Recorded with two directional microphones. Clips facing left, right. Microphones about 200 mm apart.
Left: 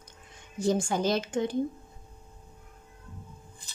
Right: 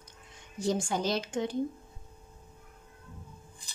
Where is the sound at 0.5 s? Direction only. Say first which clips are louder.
Left 3 dB; 50° left (ahead or behind).